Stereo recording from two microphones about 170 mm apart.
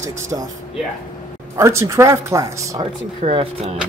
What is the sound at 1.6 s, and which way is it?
Speech, 15° right (ahead or behind).